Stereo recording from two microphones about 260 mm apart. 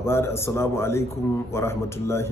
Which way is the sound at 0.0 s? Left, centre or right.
Centre.